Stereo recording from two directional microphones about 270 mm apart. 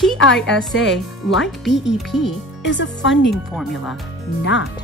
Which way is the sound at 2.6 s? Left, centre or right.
Left.